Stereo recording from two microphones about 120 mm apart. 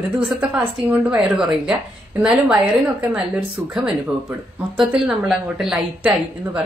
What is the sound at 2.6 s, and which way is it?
Speech, 50° right (ahead or behind).